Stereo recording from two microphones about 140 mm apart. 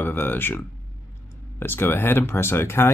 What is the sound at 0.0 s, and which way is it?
Speech, 15° left (ahead or behind).